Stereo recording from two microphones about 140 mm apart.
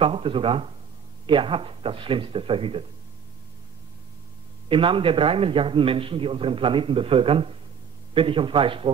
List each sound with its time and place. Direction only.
0.0 s a man's voice: 40° right (ahead or behind)
4.6 s a man's voice: 40° right (ahead or behind)